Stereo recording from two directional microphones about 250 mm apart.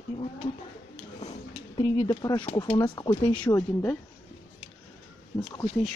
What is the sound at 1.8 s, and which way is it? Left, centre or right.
Speech, centre.